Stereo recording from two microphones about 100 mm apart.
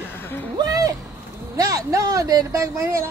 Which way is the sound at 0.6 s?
40° right (ahead or behind).